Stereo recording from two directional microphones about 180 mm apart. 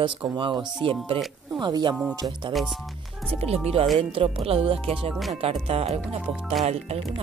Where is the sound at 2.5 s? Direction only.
Centre (ahead or behind).